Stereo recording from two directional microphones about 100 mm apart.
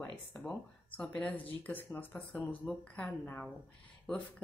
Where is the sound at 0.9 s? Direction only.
15° left (ahead or behind).